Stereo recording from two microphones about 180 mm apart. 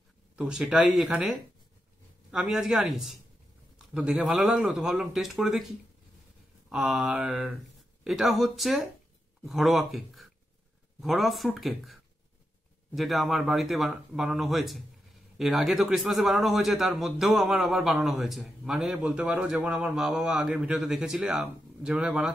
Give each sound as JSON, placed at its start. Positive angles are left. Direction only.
{"t": 0.4, "sound": "a man's voice", "side_deg": -5}
{"t": 2.3, "sound": "a man's voice", "side_deg": -5}
{"t": 6.7, "sound": "a man's voice", "side_deg": 0}